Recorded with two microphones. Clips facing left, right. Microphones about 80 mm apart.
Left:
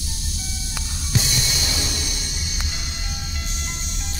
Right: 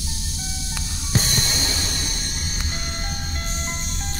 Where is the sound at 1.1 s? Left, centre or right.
Right.